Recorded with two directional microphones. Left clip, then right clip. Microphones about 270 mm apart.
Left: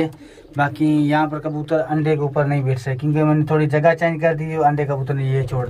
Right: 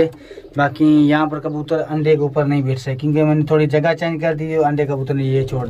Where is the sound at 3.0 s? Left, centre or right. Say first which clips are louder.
Right 3 dB; left.